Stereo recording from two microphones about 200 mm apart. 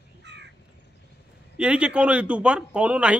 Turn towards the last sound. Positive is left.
turn(degrees=-5)  # may be behind; listen again after turning